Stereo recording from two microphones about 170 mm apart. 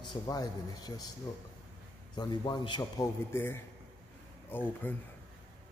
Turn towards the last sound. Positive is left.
turn(degrees=10)  # may be behind; listen again after turning